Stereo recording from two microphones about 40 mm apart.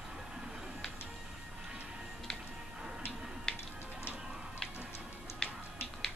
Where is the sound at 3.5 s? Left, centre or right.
Centre.